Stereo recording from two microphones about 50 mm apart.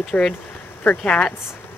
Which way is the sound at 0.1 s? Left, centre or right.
Left.